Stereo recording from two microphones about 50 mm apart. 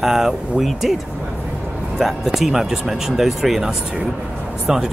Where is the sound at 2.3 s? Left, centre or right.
Centre.